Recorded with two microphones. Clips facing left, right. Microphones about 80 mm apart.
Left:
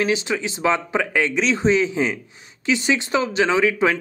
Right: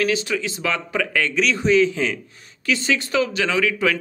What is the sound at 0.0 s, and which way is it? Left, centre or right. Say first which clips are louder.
Speech: even; left.